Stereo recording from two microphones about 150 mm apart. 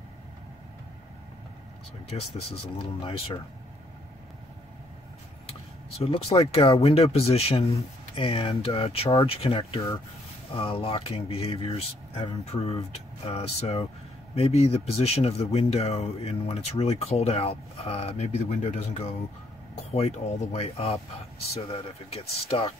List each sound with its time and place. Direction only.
2.8 s speech: 35° left (ahead or behind)
5.9 s speech: 40° left (ahead or behind)